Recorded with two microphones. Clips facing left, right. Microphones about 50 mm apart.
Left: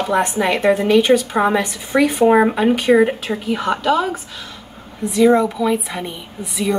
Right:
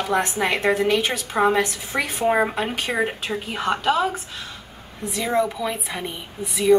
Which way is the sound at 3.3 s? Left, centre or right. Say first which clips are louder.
Left 4 dB; centre.